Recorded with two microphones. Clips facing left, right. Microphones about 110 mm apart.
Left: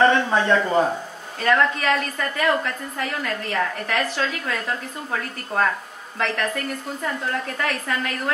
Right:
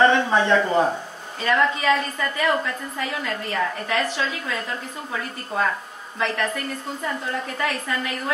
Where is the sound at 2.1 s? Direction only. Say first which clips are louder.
Left 1 dB; 60° left (ahead or behind).